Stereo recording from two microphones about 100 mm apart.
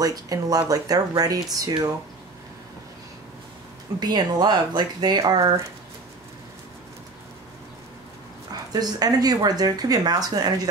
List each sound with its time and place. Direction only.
0.0 s speech: 40° right (ahead or behind)
4.0 s speech: 45° right (ahead or behind)
8.5 s speech: 40° right (ahead or behind)